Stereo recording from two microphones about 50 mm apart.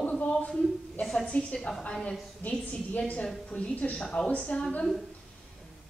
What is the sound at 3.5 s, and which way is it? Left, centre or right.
A woman's voice, left.